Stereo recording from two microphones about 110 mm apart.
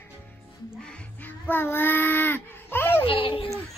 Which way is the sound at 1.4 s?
20° left (ahead or behind).